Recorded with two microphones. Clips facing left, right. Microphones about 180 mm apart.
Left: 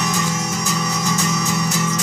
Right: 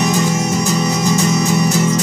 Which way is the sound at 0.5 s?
35° right (ahead or behind).